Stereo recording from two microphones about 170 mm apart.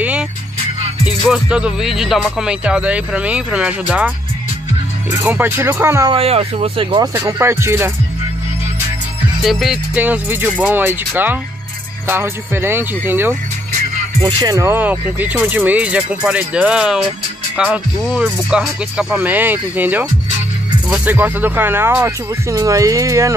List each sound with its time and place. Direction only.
1.0 s speech: 5° right (ahead or behind)
5.2 s speech: 10° right (ahead or behind)
6.1 s speech: 35° right (ahead or behind)
7.2 s speech: 15° right (ahead or behind)
9.4 s speech: centre (ahead or behind); by 23.3 s 20° right (ahead or behind)